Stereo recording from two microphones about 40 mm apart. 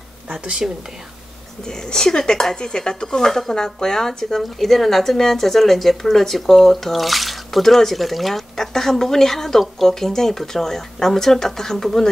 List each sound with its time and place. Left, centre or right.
0.4 s speech: right
1.6 s speech: centre